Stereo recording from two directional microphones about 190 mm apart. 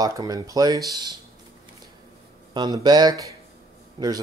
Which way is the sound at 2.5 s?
20° right (ahead or behind).